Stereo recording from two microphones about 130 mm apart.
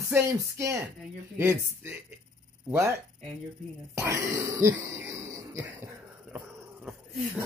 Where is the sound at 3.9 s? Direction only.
25° right (ahead or behind).